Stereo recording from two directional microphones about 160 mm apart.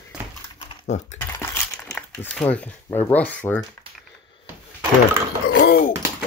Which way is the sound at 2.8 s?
20° left (ahead or behind).